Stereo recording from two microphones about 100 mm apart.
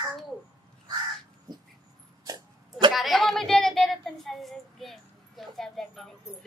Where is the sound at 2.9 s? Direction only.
Centre (ahead or behind).